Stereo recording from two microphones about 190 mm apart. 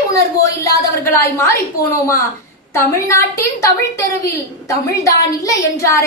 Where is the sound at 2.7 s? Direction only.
15° left (ahead or behind).